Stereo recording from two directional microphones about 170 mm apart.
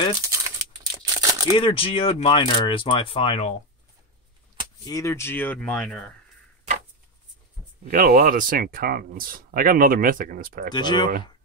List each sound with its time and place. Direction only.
0.9 s crumpling: 20° right (ahead or behind)
1.6 s speech: 30° left (ahead or behind)
4.8 s speech: 20° left (ahead or behind); by 5.9 s 5° left (ahead or behind)
7.8 s speech: 55° right (ahead or behind)
10.7 s speech: 25° left (ahead or behind)